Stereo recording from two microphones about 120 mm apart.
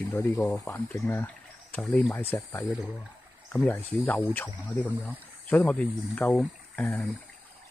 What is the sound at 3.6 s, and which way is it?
Speech, 15° left (ahead or behind).